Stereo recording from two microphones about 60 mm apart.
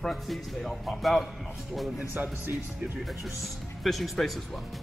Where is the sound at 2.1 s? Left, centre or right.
Right.